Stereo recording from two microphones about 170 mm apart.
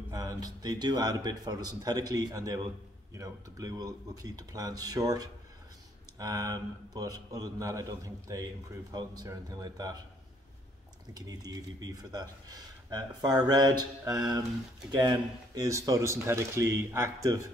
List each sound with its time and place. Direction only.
0.1 s speech: 20° right (ahead or behind)
11.1 s speech: 20° right (ahead or behind)